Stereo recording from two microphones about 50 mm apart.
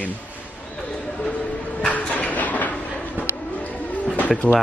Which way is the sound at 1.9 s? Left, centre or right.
Left.